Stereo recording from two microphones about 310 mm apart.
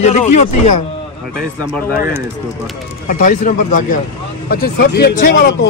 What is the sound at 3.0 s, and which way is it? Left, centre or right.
Speech, left.